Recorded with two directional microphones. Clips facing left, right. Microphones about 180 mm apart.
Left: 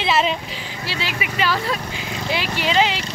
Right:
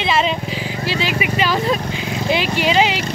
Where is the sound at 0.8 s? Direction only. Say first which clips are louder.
Right 6 dB; 15° right (ahead or behind).